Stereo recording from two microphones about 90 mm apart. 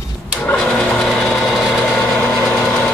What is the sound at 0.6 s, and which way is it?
Sewing machine, 5° left (ahead or behind).